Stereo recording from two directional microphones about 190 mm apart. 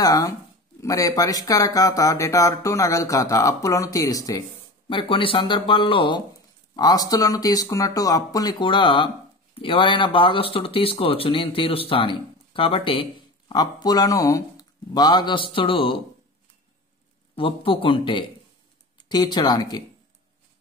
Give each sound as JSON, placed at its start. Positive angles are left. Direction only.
{"t": 0.0, "sound": "speech", "side_deg": 20}
{"t": 17.4, "sound": "speech", "side_deg": 30}